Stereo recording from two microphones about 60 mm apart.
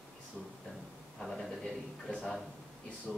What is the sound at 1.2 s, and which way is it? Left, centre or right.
A man's voice, centre.